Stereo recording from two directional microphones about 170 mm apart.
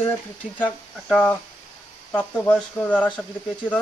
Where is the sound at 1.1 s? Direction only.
10° left (ahead or behind).